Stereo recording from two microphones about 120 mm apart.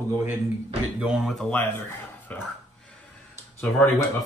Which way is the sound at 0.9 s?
5° right (ahead or behind).